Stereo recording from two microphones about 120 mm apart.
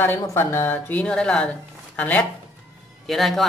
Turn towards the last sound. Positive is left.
turn(degrees=0)  # may be behind; listen again after turning